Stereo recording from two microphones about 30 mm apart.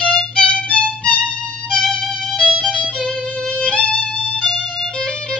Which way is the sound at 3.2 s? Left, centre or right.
Left.